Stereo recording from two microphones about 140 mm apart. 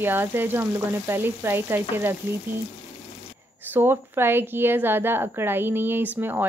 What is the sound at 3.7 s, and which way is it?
Speech, 15° right (ahead or behind).